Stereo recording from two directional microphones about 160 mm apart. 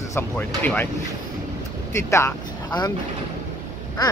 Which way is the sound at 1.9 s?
15° left (ahead or behind).